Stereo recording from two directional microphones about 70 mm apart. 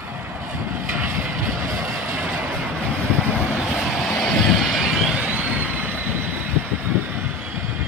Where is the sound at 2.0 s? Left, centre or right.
Right.